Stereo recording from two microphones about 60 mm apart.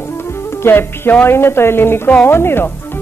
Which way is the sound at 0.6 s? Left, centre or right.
Left.